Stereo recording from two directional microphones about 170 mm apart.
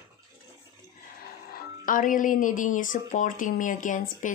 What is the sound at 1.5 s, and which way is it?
Speech, 55° left (ahead or behind).